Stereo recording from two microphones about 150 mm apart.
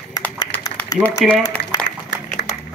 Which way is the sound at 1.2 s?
Centre (ahead or behind).